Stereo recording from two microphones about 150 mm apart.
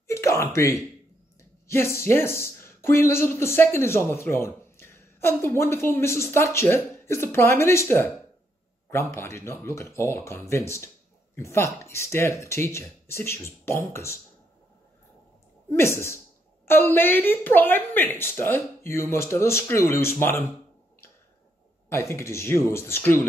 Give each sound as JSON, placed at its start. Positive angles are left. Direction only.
{"t": 0.1, "sound": "speech", "side_deg": 20}
{"t": 9.1, "sound": "speech", "side_deg": 20}
{"t": 15.7, "sound": "speech", "side_deg": 15}
{"t": 21.8, "sound": "speech", "side_deg": 20}